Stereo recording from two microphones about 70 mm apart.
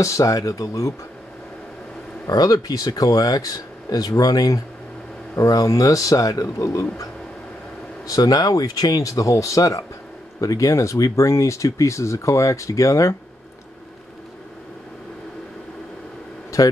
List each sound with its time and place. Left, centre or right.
0.0 s speech: left
2.2 s speech: left
8.1 s speech: left